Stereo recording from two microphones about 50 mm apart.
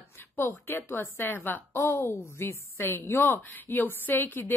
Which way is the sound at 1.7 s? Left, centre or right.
Left.